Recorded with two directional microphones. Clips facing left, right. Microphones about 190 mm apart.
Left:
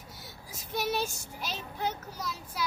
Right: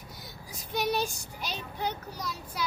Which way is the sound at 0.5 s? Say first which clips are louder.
Right 2 dB; 5° left (ahead or behind).